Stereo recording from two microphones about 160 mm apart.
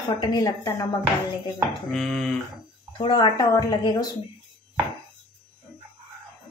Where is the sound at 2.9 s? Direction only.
30° left (ahead or behind).